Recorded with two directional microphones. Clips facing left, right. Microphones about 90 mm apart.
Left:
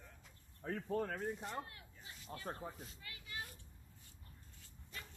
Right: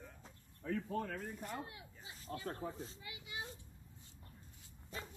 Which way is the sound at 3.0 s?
15° right (ahead or behind).